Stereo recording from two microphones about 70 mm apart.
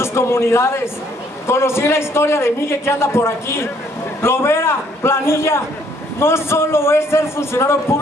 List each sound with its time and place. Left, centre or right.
0.0 s a man's voice: left